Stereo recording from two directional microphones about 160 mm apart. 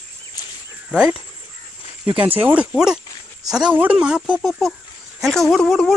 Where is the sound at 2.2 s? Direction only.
10° right (ahead or behind).